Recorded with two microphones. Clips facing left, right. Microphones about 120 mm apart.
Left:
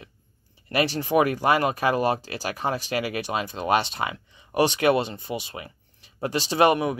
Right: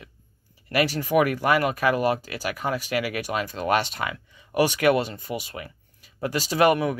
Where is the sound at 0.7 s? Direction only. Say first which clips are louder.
Even; 25° left (ahead or behind).